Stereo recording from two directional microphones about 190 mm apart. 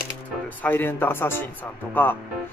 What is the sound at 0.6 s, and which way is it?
Speech, 10° left (ahead or behind).